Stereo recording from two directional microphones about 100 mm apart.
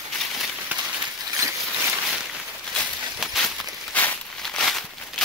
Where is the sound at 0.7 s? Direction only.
15° right (ahead or behind).